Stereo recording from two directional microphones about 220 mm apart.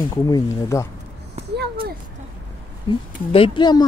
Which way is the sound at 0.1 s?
15° left (ahead or behind).